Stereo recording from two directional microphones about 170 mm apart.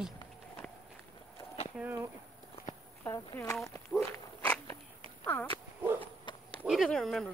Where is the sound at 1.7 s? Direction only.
10° right (ahead or behind).